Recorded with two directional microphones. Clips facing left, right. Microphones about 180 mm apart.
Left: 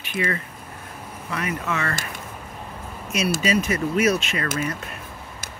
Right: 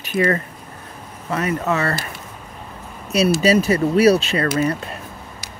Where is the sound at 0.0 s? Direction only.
40° right (ahead or behind).